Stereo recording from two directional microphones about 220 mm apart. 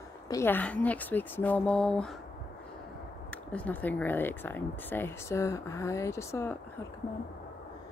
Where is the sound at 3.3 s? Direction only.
5° left (ahead or behind).